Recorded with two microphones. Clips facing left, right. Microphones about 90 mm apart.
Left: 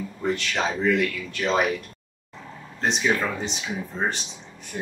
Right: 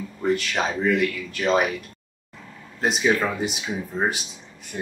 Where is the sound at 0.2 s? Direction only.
5° right (ahead or behind).